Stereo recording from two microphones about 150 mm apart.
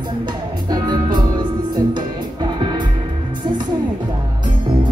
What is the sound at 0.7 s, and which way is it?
Music, 30° right (ahead or behind).